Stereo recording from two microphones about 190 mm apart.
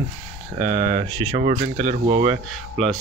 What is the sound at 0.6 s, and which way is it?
Speech, 35° right (ahead or behind).